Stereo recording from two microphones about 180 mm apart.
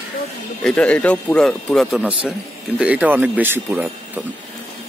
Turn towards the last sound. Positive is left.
turn(degrees=-10)  # may be behind; listen again after turning